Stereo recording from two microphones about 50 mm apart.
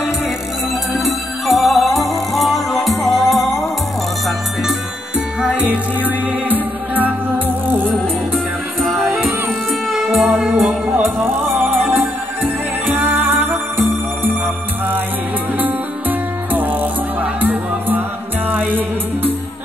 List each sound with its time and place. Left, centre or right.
0.9 s music: centre
5.4 s music: right
9.1 s music: centre
10.5 s music: right
11.0 s music: right
13.0 s music: right
15.6 s music: right